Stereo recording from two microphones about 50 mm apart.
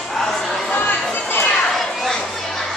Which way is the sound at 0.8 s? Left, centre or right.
Left.